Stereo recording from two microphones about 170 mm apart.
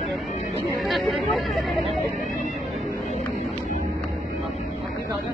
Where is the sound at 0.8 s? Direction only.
Centre (ahead or behind).